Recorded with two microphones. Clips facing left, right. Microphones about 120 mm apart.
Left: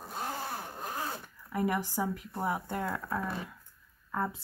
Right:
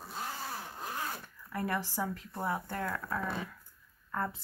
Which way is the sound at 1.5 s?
15° left (ahead or behind).